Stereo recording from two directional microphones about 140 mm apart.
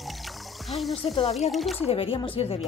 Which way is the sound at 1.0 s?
45° left (ahead or behind).